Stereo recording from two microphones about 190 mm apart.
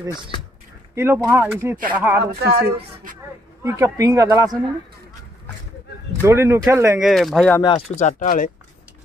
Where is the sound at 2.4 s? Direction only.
55° right (ahead or behind).